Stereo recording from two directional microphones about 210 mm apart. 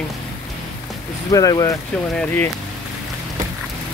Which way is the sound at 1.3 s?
15° left (ahead or behind).